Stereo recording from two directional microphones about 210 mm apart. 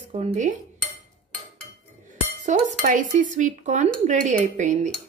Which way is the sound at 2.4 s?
35° right (ahead or behind).